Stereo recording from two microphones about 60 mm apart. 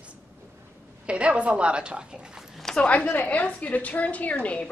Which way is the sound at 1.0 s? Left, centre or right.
Centre.